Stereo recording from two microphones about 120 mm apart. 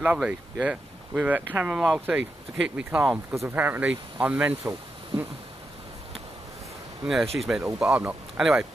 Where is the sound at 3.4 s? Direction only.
15° right (ahead or behind).